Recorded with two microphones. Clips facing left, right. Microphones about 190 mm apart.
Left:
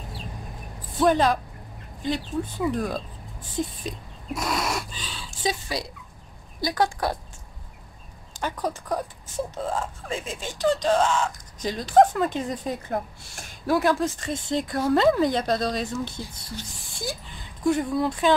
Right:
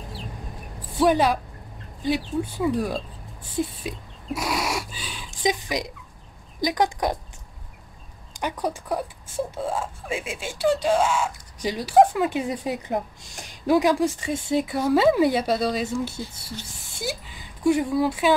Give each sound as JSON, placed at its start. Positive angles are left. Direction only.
{"t": 0.9, "sound": "speech", "side_deg": -10}
{"t": 3.5, "sound": "a sound", "side_deg": -10}
{"t": 6.6, "sound": "speech", "side_deg": -15}
{"t": 8.4, "sound": "speech", "side_deg": -15}